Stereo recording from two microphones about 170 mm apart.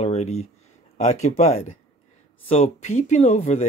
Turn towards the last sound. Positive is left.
turn(degrees=40)  # may be behind; listen again after turning